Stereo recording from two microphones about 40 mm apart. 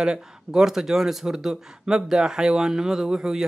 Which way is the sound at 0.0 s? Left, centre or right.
Centre.